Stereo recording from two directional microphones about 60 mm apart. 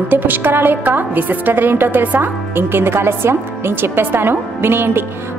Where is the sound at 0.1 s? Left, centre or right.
Right.